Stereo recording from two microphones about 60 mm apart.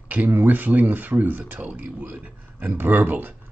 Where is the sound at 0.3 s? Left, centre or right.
Right.